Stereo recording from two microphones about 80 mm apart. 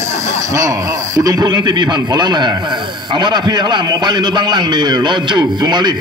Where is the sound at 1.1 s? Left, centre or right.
Right.